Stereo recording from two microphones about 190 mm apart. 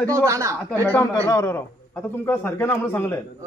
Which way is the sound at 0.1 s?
15° right (ahead or behind).